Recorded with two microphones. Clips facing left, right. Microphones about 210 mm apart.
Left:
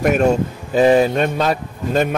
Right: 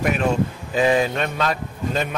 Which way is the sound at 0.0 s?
45° left (ahead or behind).